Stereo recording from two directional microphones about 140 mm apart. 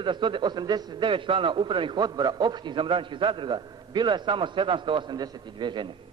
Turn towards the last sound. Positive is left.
turn(degrees=-35)  # may be behind; listen again after turning